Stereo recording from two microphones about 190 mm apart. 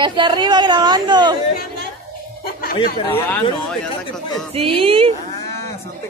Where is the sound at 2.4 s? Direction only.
50° left (ahead or behind).